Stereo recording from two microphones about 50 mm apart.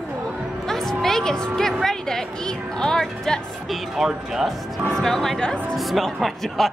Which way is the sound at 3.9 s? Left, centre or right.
Centre.